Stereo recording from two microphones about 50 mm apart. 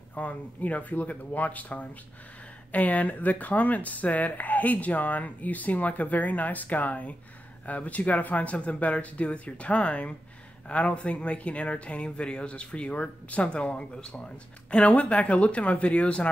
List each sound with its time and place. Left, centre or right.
0.1 s speech: left